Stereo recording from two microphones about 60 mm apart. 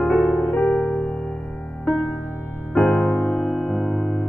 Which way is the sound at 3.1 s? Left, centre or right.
Left.